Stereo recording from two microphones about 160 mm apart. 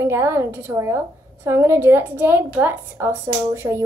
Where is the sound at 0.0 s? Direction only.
15° right (ahead or behind).